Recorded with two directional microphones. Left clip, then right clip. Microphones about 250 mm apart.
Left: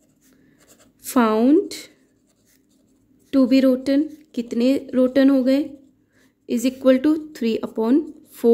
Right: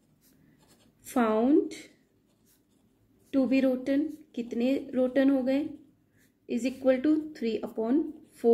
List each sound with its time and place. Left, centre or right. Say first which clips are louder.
1.0 s a woman's voice: left 8 dB; left
3.3 s a woman's voice: left 9 dB; left